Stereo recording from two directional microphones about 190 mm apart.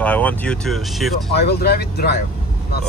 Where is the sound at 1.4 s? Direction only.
60° left (ahead or behind).